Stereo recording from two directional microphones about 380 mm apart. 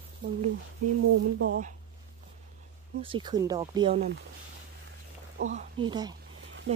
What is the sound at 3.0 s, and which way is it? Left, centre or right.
Speech, centre.